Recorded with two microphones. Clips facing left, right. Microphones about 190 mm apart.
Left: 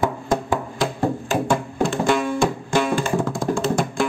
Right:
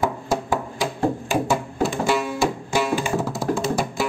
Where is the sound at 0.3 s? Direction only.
5° right (ahead or behind).